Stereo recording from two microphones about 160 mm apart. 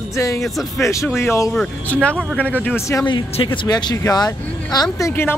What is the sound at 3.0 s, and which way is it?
Speech, 30° left (ahead or behind).